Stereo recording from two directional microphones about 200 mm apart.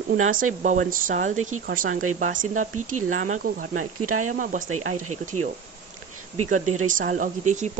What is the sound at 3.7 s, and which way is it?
Speech, 90° right.